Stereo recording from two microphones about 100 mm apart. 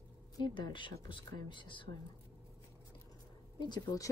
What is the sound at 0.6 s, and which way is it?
Speech, 55° left (ahead or behind).